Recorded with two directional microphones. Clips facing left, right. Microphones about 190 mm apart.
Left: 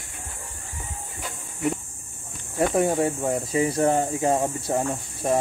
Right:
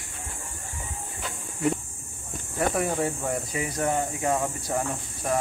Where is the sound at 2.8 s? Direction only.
25° left (ahead or behind).